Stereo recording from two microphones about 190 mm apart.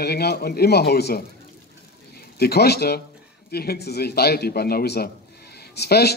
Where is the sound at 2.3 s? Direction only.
55° left (ahead or behind).